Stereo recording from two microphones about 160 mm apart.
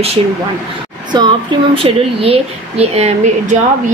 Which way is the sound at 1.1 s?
25° right (ahead or behind).